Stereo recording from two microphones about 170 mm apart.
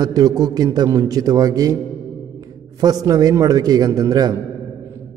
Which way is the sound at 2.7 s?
25° right (ahead or behind).